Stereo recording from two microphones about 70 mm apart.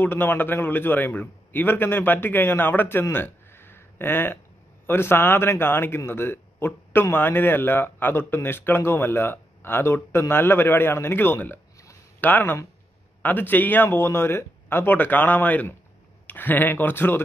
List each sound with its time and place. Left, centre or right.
0.0 s a man's voice: left